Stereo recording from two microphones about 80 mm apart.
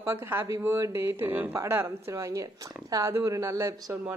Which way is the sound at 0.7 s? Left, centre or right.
Right.